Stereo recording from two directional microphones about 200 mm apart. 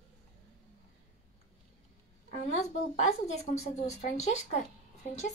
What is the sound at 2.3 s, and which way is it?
A woman's voice, 35° left (ahead or behind).